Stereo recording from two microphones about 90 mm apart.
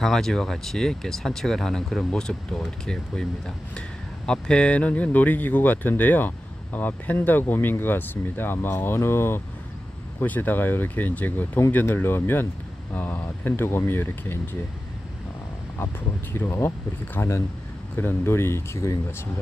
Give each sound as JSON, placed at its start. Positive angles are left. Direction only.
{"t": 0.0, "sound": "speech", "side_deg": 5}
{"t": 4.3, "sound": "speech", "side_deg": 10}
{"t": 16.3, "sound": "speech", "side_deg": 25}